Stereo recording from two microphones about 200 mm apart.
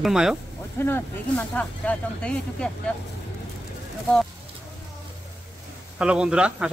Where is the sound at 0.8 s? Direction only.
10° left (ahead or behind).